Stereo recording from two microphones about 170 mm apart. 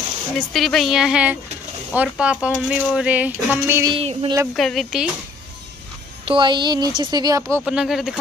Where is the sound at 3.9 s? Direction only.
30° right (ahead or behind).